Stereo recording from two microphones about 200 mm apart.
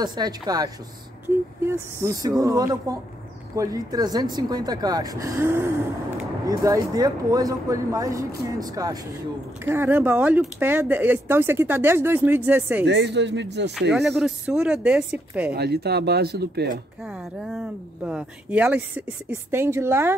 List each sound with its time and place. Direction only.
0.0 s speech: 20° right (ahead or behind)
12.8 s speech: 60° right (ahead or behind)
13.9 s speech: centre (ahead or behind)
15.5 s speech: 55° right (ahead or behind)
17.0 s speech: centre (ahead or behind)